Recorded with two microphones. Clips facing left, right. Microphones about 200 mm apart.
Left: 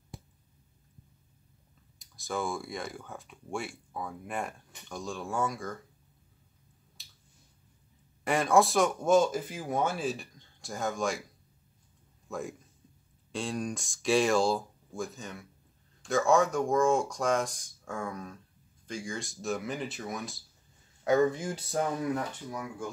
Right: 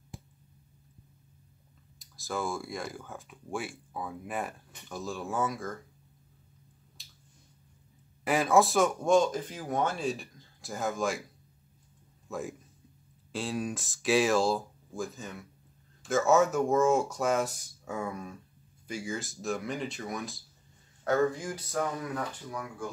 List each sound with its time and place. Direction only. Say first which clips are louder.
2.0 s speech: left 1 dB; centre (ahead or behind)
7.0 s finger snapping: right 3 dB; centre (ahead or behind)
8.2 s speech: even; centre (ahead or behind)
12.3 s a man's voice: even; centre (ahead or behind)
21.0 s speech: left 2 dB; 20° left (ahead or behind)